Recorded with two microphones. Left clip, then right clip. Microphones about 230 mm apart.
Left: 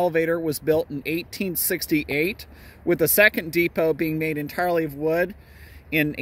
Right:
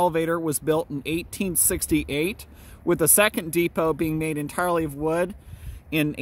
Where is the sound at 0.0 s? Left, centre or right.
Right.